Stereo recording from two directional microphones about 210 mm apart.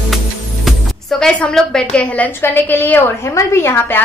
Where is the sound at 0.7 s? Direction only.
Centre (ahead or behind).